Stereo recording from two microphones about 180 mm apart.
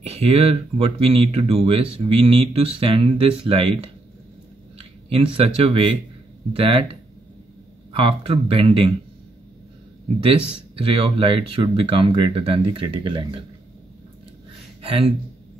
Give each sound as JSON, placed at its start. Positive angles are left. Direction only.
{"t": 0.0, "sound": "speech", "side_deg": -35}
{"t": 4.7, "sound": "speech", "side_deg": -30}
{"t": 10.8, "sound": "speech", "side_deg": -30}
{"t": 14.8, "sound": "speech", "side_deg": -30}